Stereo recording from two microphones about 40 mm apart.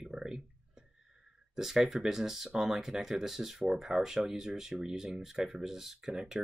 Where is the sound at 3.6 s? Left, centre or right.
Centre.